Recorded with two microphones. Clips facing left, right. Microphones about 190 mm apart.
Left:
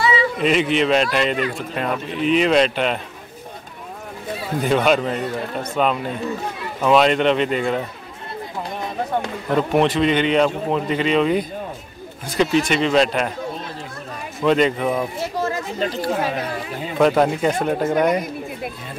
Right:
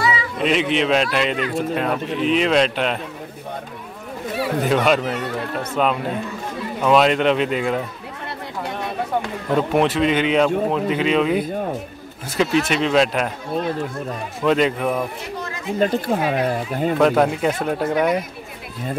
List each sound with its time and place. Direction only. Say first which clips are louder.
0.0 s a sound: left 3 dB; 25° left (ahead or behind)
0.4 s speech: right 1 dB; centre (ahead or behind)
4.6 s speech: left 2 dB; centre (ahead or behind)
9.6 s speech: left 1 dB; 5° right (ahead or behind)
14.4 s speech: left 1 dB; centre (ahead or behind)
15.8 s speech: right 3 dB; 50° right (ahead or behind)
17.0 s speech: left 2 dB; centre (ahead or behind)